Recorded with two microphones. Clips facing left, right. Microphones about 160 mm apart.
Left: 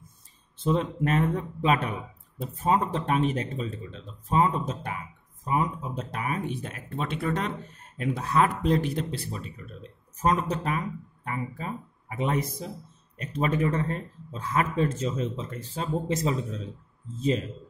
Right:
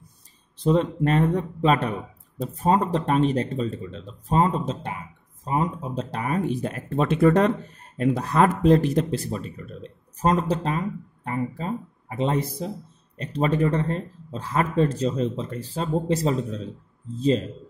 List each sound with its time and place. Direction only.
0.6 s speech: 35° right (ahead or behind)
3.6 s speech: centre (ahead or behind)
4.0 s speech: 35° right (ahead or behind)
7.0 s speech: 65° right (ahead or behind)
8.0 s speech: 40° right (ahead or behind)
10.5 s speech: 30° right (ahead or behind)